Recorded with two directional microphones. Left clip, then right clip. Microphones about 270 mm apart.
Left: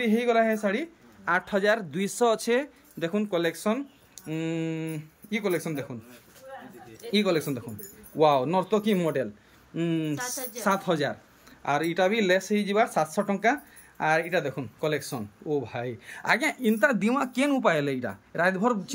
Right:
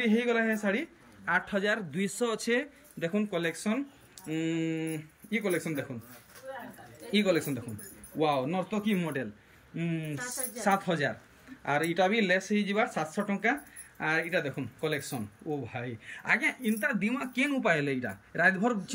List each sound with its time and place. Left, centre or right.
0.0 s speech: centre
7.1 s speech: centre